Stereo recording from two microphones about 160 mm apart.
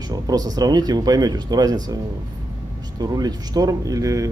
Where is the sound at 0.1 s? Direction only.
25° right (ahead or behind).